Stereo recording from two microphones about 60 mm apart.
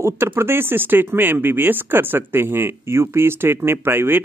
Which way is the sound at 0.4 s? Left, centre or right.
Right.